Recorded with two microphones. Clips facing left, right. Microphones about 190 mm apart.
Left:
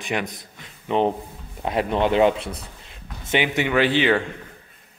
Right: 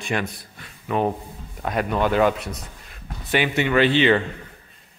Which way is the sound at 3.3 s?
15° left (ahead or behind).